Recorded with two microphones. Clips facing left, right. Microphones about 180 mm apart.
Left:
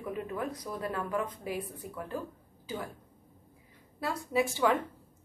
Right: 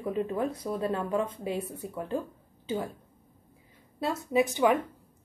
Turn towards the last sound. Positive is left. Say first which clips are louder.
# right 4 dB
turn(degrees=-20)  # may be behind; listen again after turning